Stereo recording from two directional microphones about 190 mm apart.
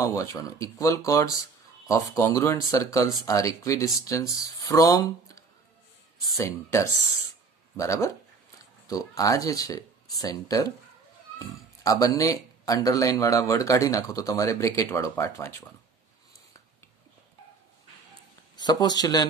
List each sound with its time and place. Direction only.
0.0 s speech: 15° left (ahead or behind)
11.8 s speech: 20° left (ahead or behind)
18.6 s speech: 20° left (ahead or behind)